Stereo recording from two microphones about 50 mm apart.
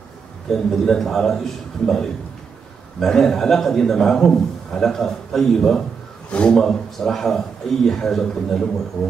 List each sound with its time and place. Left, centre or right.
0.5 s a man's voice: centre
6.3 s a man's voice: left
6.6 s a man's voice: centre